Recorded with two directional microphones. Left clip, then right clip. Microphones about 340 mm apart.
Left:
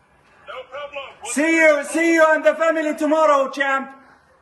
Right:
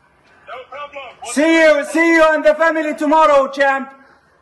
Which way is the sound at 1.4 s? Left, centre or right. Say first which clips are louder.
Right 4 dB; centre.